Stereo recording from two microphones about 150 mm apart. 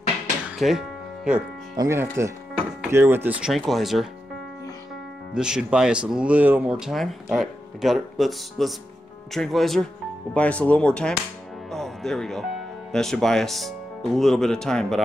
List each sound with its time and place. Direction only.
0.6 s music: centre (ahead or behind)
1.8 s speech: 20° right (ahead or behind); by 4.1 s centre (ahead or behind)
5.3 s speech: 5° right (ahead or behind)